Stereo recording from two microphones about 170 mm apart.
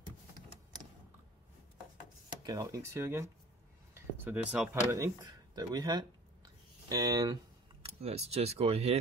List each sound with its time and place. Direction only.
2.4 s speech: 20° right (ahead or behind)
4.9 s speech: 20° right (ahead or behind)
7.8 s speech: 35° right (ahead or behind)